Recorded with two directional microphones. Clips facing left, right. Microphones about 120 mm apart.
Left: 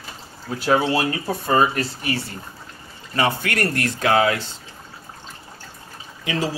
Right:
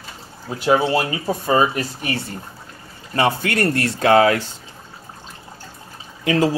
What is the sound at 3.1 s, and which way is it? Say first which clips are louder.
Speech: right 3 dB; 25° right (ahead or behind).